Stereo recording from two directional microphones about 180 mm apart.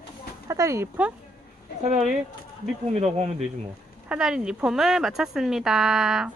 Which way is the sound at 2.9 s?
35° right (ahead or behind).